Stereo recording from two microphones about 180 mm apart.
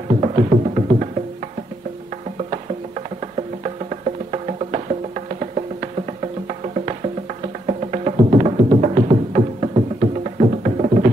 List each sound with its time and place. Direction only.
0.1 s music: 35° right (ahead or behind)
4.3 s music: 35° right (ahead or behind)
7.6 s music: 35° right (ahead or behind)